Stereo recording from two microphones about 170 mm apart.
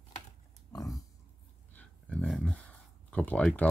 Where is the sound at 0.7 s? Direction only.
20° left (ahead or behind).